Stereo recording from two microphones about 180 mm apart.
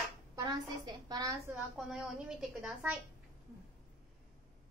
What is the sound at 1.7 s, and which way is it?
A woman's voice, centre (ahead or behind).